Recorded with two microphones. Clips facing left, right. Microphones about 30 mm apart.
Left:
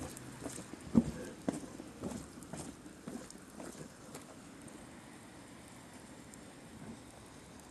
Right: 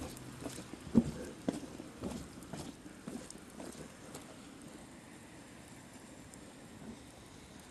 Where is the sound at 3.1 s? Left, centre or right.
Centre.